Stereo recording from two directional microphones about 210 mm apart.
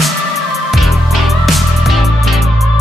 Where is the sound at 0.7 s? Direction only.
Centre (ahead or behind).